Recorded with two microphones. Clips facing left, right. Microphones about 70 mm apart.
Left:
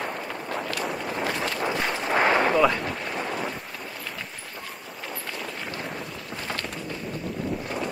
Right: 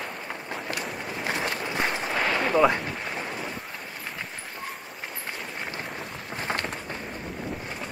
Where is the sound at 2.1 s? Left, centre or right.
Left.